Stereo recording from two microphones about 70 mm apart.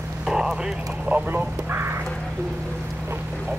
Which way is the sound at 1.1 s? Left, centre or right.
Right.